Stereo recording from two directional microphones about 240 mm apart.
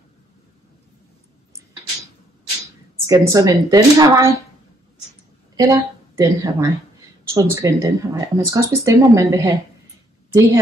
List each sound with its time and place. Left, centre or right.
3.1 s speech: centre
5.6 s speech: centre